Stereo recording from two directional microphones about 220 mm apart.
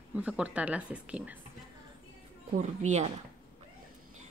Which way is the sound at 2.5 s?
35° right (ahead or behind).